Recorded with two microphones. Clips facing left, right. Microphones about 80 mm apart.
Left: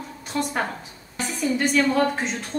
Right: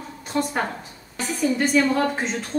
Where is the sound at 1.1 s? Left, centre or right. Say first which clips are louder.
Right 2 dB; centre.